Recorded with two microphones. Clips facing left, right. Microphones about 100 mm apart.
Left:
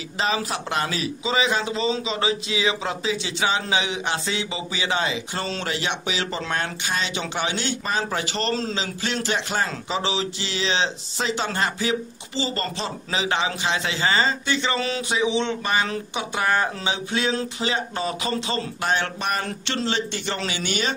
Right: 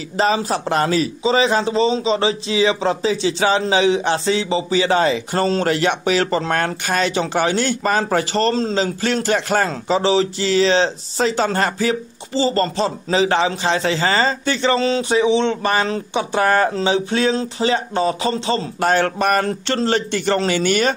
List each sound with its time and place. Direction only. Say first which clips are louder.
0.2 s a man's voice: right 7 dB; 35° right (ahead or behind)
18.9 s speech: right 9 dB; 45° right (ahead or behind)